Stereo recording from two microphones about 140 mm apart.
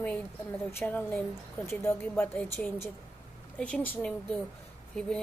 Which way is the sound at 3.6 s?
10° left (ahead or behind).